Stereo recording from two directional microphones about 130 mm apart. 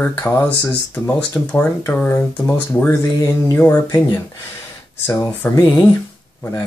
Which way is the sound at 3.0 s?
25° left (ahead or behind).